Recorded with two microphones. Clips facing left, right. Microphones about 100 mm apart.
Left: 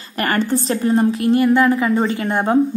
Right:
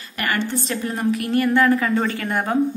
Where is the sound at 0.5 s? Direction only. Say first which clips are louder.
Left 8 dB; 35° left (ahead or behind).